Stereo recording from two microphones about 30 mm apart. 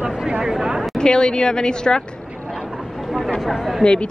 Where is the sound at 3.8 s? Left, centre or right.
Left.